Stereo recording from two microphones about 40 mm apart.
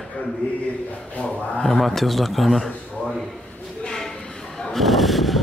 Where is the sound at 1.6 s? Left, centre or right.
Centre.